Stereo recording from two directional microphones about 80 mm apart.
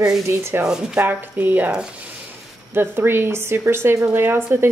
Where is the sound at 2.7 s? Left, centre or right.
Right.